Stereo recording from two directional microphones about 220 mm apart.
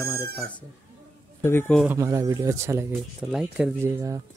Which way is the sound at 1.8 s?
15° right (ahead or behind).